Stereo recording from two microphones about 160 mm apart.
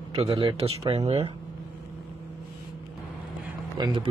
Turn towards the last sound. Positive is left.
turn(degrees=-25)  # may be behind; listen again after turning